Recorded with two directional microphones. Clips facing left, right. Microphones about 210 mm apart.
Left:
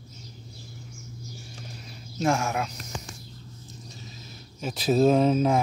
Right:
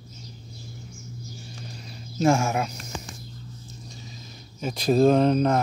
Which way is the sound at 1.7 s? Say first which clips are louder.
Right 2 dB; 5° left (ahead or behind).